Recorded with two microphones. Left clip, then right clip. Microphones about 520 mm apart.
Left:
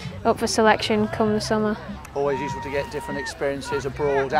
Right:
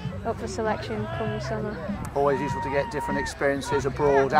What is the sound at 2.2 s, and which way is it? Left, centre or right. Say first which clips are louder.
Speech: even; centre.